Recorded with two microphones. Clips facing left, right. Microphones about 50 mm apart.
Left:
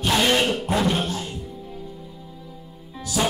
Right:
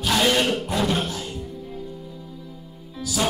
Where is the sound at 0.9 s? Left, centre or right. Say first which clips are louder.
Left 1 dB; centre.